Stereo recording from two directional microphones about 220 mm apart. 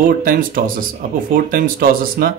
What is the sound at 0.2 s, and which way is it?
A man's voice, 40° right (ahead or behind).